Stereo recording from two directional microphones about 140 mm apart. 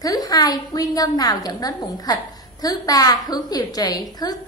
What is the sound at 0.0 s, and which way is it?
A woman's voice, 25° left (ahead or behind).